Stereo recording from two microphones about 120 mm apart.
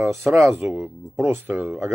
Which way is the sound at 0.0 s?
20° right (ahead or behind).